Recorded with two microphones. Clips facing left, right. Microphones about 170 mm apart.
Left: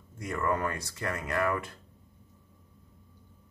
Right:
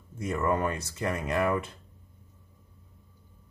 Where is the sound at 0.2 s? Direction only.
20° right (ahead or behind).